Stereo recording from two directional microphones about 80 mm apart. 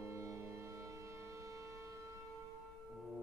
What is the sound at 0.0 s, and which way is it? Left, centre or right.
Music, right.